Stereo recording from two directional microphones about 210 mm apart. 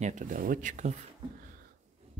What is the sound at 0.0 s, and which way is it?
Speech, 35° right (ahead or behind).